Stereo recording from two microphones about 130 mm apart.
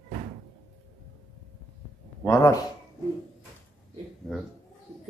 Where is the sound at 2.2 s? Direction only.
25° left (ahead or behind).